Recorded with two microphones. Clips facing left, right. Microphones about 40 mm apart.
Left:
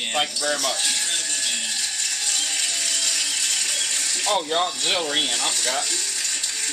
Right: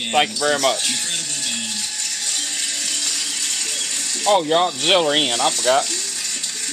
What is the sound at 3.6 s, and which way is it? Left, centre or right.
Music, left.